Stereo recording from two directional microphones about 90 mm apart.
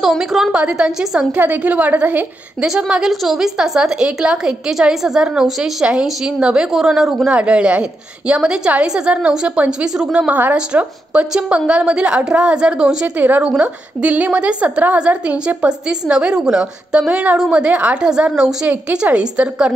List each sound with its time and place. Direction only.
0.0 s a woman's voice: centre (ahead or behind)